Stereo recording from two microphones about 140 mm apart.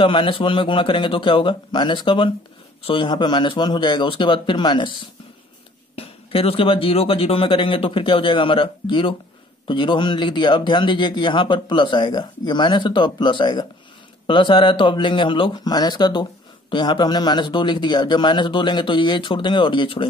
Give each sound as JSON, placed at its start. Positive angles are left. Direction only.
{"t": 0.0, "sound": "speech", "side_deg": 40}
{"t": 5.9, "sound": "speech", "side_deg": 40}